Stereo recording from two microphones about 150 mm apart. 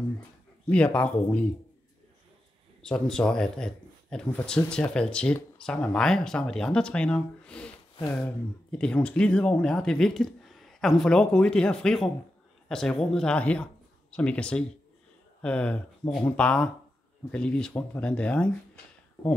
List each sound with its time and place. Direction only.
0.7 s speech: 10° left (ahead or behind)
2.8 s speech: 5° left (ahead or behind)
8.7 s speech: 5° left (ahead or behind)